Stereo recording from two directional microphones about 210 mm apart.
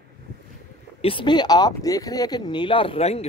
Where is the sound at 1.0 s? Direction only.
20° left (ahead or behind).